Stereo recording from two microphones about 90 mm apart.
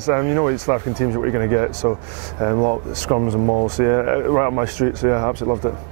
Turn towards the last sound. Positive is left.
turn(degrees=-25)  # may be behind; listen again after turning